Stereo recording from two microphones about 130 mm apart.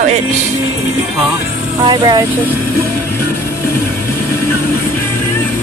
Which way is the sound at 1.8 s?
35° right (ahead or behind).